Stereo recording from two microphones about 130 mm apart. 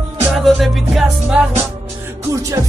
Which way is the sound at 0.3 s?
Centre (ahead or behind).